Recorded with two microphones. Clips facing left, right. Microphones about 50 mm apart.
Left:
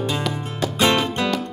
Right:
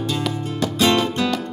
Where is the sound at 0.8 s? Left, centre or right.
Centre.